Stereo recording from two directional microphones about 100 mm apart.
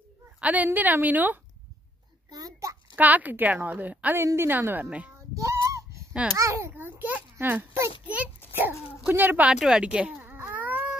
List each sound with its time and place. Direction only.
0.4 s a woman's voice: 15° right (ahead or behind)
2.3 s a sound: 35° right (ahead or behind)
3.0 s a woman's voice: 15° right (ahead or behind)
5.3 s child singing: 35° right (ahead or behind)
6.3 s a woman's voice: 30° right (ahead or behind)
6.7 s a sound: 20° right (ahead or behind)
8.0 s a woman's voice: 15° right (ahead or behind)
9.5 s a woman's voice: 5° right (ahead or behind)
9.9 s cat: 15° right (ahead or behind)